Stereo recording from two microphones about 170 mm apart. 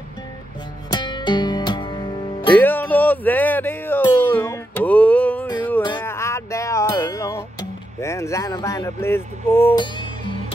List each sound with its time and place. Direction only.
0.9 s music: 25° left (ahead or behind)
2.5 s music: 10° left (ahead or behind)
5.8 s music: 25° left (ahead or behind)
8.0 s speech: 15° left (ahead or behind)